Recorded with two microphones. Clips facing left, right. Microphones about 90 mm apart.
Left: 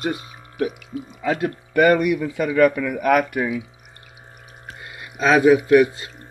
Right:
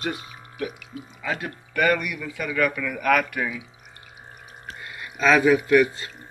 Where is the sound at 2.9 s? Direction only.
25° left (ahead or behind).